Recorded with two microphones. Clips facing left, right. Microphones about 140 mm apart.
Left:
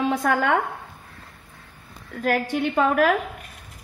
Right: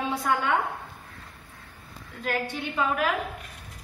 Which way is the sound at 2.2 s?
55° left (ahead or behind).